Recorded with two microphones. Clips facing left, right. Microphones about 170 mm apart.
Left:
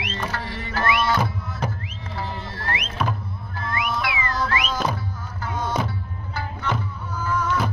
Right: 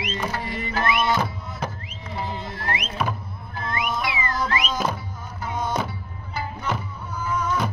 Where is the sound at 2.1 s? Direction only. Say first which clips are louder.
Right 2 dB; 15° right (ahead or behind).